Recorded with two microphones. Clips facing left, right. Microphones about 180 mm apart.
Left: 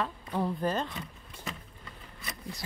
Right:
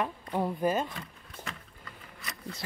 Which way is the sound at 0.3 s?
15° right (ahead or behind).